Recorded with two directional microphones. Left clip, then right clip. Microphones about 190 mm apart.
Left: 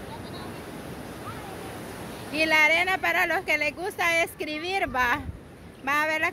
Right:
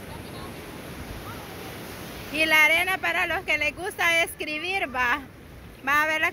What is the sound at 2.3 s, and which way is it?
Speech, 10° left (ahead or behind).